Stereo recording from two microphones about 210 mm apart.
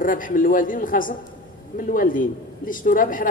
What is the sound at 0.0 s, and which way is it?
Speech, 40° left (ahead or behind).